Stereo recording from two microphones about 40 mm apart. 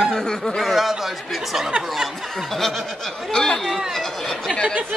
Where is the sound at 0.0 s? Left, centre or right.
Centre.